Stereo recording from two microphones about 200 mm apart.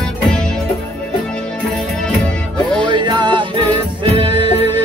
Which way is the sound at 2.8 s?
20° right (ahead or behind).